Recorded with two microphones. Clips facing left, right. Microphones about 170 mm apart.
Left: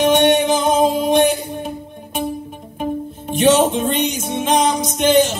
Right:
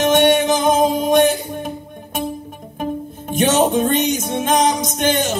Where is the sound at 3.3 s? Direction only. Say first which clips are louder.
Left 2 dB; 45° right (ahead or behind).